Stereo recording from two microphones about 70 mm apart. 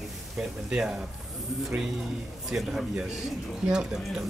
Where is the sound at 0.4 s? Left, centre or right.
Centre.